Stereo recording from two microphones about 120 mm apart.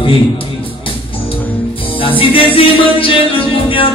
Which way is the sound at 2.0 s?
50° left (ahead or behind).